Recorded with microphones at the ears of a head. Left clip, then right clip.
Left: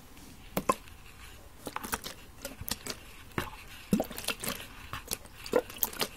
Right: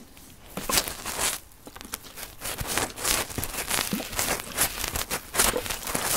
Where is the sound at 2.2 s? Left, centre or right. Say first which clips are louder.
Right 10 dB; right.